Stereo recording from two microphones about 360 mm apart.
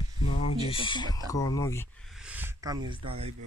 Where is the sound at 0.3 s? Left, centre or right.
Centre.